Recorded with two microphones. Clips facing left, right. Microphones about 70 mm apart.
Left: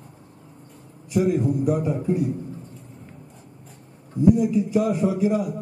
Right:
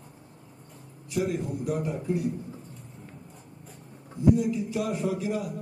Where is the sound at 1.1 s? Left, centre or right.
Centre.